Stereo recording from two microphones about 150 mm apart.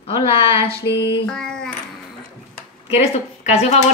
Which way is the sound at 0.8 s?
90° left.